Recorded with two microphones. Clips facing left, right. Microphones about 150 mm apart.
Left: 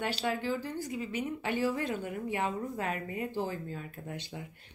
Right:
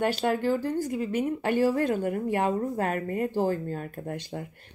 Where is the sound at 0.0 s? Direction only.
50° right (ahead or behind).